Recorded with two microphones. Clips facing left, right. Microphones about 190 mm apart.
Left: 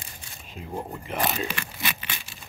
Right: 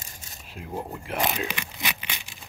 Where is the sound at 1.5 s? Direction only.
15° right (ahead or behind).